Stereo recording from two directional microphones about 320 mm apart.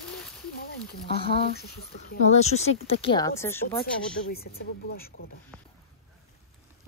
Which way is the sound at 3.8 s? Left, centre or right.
Left.